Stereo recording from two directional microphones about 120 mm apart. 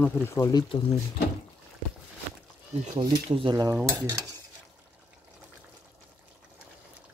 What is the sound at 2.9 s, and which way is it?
Speech, 30° right (ahead or behind).